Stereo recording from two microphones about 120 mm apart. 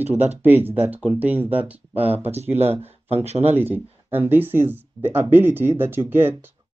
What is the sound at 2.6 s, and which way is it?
Speech, 55° right (ahead or behind).